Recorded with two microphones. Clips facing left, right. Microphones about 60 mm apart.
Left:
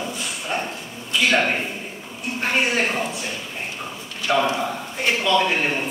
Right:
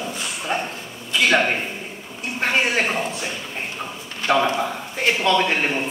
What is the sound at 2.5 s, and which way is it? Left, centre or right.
Speech, centre.